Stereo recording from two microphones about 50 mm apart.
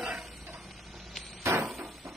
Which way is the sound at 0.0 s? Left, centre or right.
Centre.